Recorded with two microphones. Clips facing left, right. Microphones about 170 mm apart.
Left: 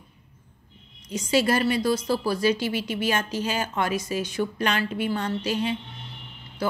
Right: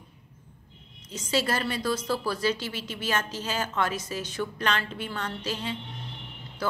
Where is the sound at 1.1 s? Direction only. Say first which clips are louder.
Left 5 dB; 15° left (ahead or behind).